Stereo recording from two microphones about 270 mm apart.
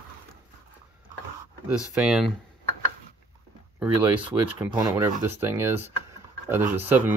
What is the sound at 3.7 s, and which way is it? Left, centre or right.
Speech, centre.